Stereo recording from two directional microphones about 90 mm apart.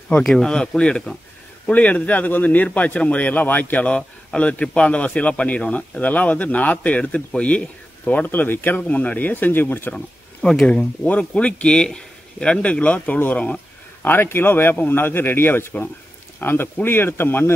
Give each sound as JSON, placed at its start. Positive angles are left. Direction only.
{"t": 0.2, "sound": "speech", "side_deg": 5}
{"t": 9.9, "sound": "speech", "side_deg": 5}